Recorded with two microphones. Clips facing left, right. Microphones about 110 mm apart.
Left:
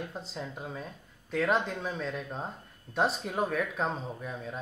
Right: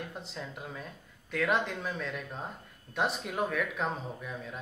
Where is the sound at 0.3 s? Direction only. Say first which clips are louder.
Left 3 dB; 20° left (ahead or behind).